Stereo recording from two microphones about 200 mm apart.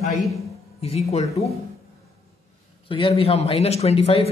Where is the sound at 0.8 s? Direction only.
30° left (ahead or behind).